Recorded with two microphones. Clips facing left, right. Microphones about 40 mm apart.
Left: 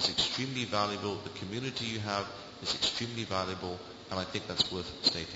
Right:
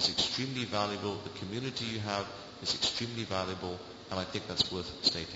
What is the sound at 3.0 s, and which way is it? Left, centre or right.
A man's voice, centre.